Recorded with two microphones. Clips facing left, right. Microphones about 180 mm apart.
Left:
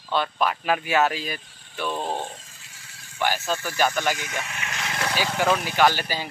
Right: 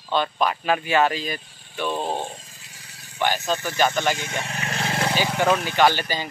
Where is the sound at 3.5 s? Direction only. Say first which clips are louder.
Right 2 dB; 20° right (ahead or behind).